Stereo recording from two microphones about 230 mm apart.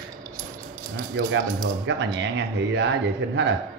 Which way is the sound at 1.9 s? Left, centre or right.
Right.